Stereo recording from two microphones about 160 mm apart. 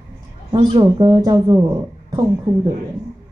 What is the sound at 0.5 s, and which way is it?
A woman's voice, 30° right (ahead or behind).